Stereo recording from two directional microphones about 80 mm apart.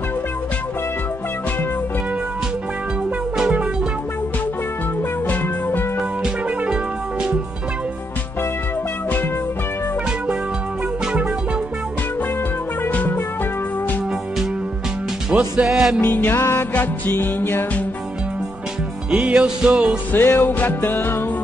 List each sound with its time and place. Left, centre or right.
3.3 s music: centre
5.3 s music: left
6.2 s music: centre
12.8 s music: left
15.2 s music: centre
16.0 s music: centre
16.3 s music: left
16.7 s music: left
19.1 s music: centre
20.2 s music: left